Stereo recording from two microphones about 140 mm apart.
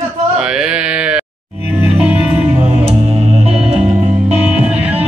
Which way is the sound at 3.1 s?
50° right (ahead or behind).